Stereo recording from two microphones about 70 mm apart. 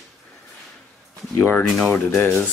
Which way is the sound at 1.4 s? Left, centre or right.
Left.